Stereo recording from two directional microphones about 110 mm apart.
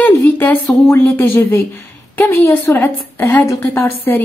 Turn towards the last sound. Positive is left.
turn(degrees=20)  # may be behind; listen again after turning